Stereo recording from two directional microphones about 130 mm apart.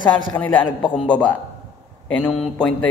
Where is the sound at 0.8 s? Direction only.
10° left (ahead or behind).